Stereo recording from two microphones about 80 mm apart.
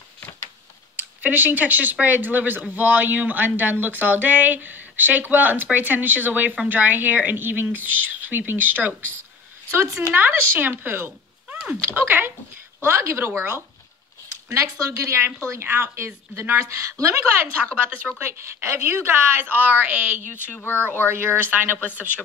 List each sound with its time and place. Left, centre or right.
1.2 s a woman's voice: right
14.5 s a woman's voice: right
18.2 s speech: right
20.5 s speech: left
21.1 s speech: right